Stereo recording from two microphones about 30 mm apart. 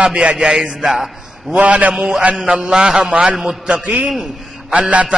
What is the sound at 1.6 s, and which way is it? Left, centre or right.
Speech, right.